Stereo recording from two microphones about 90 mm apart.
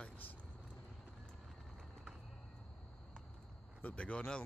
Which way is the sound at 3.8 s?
15° left (ahead or behind).